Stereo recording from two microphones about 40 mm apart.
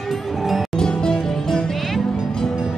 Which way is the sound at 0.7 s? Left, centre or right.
Centre.